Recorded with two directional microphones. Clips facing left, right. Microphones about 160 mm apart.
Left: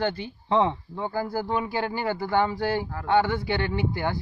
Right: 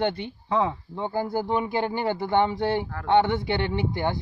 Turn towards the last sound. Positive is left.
turn(degrees=-20)  # may be behind; listen again after turning